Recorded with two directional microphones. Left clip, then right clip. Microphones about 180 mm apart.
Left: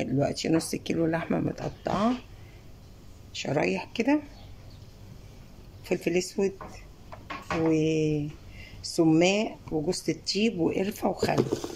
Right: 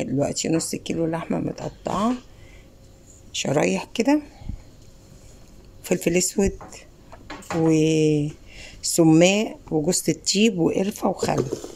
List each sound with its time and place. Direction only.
0.0 s speech: 20° right (ahead or behind)
3.3 s speech: 35° right (ahead or behind)
5.9 s speech: 40° right (ahead or behind)
10.7 s speech: 30° right (ahead or behind)